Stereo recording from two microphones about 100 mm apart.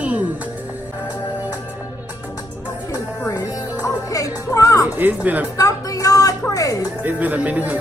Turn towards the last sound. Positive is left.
turn(degrees=-15)  # may be behind; listen again after turning